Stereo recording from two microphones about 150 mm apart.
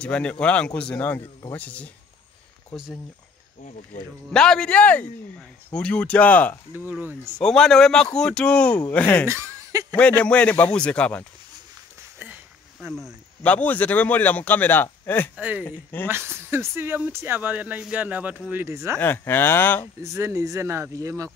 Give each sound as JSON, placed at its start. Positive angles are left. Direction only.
{"t": 0.0, "sound": "a man's voice", "side_deg": 5}
{"t": 4.3, "sound": "a man's voice", "side_deg": 5}
{"t": 6.7, "sound": "speech", "side_deg": -10}
{"t": 7.3, "sound": "a man's voice", "side_deg": 5}
{"t": 9.3, "sound": "speech", "side_deg": -20}
{"t": 9.9, "sound": "a man's voice", "side_deg": 10}
{"t": 12.9, "sound": "a man's voice", "side_deg": 5}
{"t": 15.3, "sound": "speech", "side_deg": -10}
{"t": 15.6, "sound": "a man's voice", "side_deg": 15}
{"t": 16.1, "sound": "speech", "side_deg": -15}
{"t": 18.9, "sound": "a man's voice", "side_deg": 15}
{"t": 20.0, "sound": "speech", "side_deg": -20}